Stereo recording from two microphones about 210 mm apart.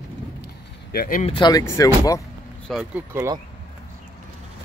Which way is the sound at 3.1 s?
15° right (ahead or behind).